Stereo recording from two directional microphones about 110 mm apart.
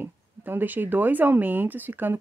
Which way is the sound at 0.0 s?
20° right (ahead or behind).